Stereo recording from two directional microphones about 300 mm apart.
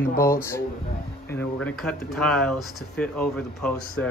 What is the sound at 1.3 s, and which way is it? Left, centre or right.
Speech, centre.